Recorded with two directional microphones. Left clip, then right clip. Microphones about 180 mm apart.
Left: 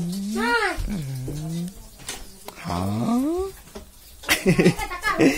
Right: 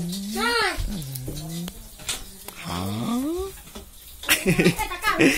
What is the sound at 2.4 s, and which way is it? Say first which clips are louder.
Dog: left 4 dB; 15° left (ahead or behind).